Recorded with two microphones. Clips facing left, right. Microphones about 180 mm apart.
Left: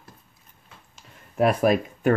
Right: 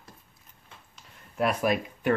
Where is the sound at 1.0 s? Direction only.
45° left (ahead or behind).